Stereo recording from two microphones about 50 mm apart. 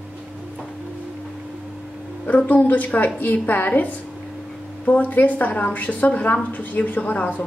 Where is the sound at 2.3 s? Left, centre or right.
Left.